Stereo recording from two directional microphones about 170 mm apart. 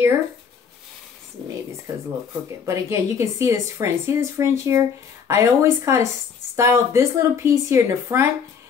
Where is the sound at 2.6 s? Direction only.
15° right (ahead or behind).